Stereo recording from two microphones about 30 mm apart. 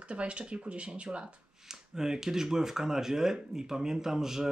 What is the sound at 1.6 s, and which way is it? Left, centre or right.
Speech, centre.